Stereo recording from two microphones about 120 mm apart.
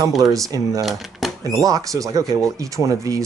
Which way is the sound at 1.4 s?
30° right (ahead or behind).